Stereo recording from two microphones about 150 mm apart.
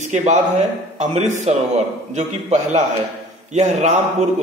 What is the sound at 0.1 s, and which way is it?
A man's voice, 55° right (ahead or behind).